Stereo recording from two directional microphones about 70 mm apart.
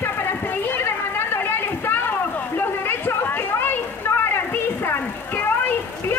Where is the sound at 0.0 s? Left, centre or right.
Left.